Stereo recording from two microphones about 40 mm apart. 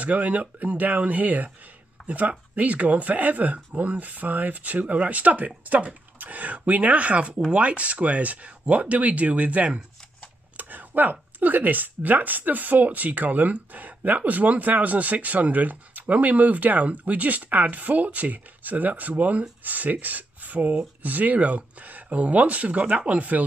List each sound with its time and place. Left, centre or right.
0.0 s speech: right
10.6 s speech: right